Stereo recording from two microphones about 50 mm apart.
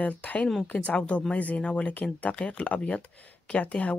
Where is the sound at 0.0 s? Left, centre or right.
Left.